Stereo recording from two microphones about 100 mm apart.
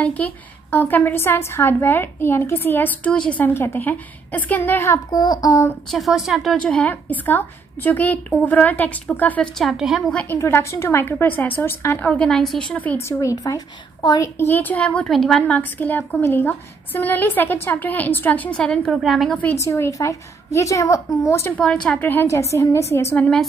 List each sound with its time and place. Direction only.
0.0 s a woman's voice: 15° left (ahead or behind)
5.1 s a woman's voice: 45° left (ahead or behind)
5.9 s speech: centre (ahead or behind)
6.9 s speech: 20° left (ahead or behind)
9.6 s speech: centre (ahead or behind)
10.1 s a woman's voice: 20° left (ahead or behind)
12.1 s speech: 5° left (ahead or behind)
13.2 s a woman's voice: 35° left (ahead or behind)
14.5 s speech: 15° left (ahead or behind)
15.0 s speech: centre (ahead or behind)
19.5 s a woman's voice: 25° left (ahead or behind)
21.5 s a woman's voice: 15° left (ahead or behind); by 22.8 s 30° left (ahead or behind)
23.1 s speech: 15° left (ahead or behind)